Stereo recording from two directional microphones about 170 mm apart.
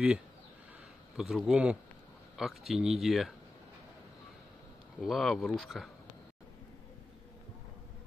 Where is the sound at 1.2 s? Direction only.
5° right (ahead or behind).